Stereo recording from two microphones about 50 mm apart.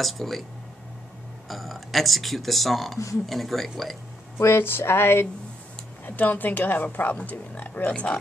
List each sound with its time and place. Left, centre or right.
0.0 s speech: centre
1.5 s speech: centre
4.4 s speech: left
4.6 s a sound: left
6.0 s speech: left